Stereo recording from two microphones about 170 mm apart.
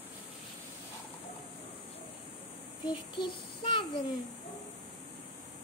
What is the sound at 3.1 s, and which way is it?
Child singing, 30° left (ahead or behind).